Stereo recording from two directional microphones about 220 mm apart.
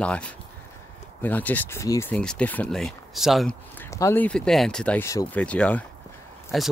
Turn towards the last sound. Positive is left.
turn(degrees=0)  # may be behind; listen again after turning